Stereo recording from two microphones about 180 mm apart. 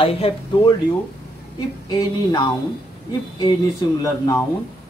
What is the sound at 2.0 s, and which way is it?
Speech, 25° left (ahead or behind).